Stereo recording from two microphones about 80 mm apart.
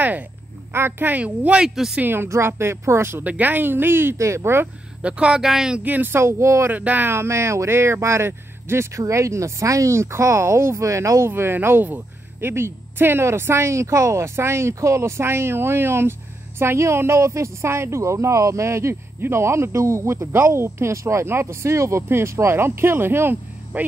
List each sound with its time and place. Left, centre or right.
0.7 s speech: right
3.3 s speech: right
5.0 s speech: centre
5.9 s speech: right
6.7 s speech: right